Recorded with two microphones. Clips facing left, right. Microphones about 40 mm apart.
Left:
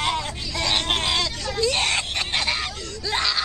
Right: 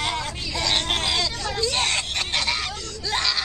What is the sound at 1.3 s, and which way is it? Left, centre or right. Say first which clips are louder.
Whimper: right 1 dB; centre.